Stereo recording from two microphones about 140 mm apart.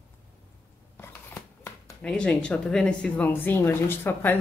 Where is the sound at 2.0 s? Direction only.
5° left (ahead or behind).